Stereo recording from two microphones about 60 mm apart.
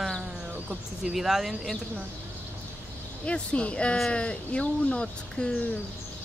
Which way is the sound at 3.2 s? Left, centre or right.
Centre.